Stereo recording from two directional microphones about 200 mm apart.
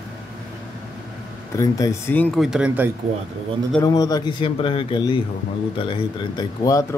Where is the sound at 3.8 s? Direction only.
20° left (ahead or behind).